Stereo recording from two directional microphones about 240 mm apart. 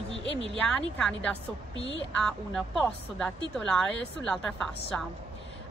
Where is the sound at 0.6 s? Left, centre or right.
Centre.